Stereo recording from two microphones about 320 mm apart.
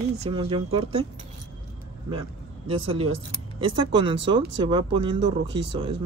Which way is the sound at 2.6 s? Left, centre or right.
Right.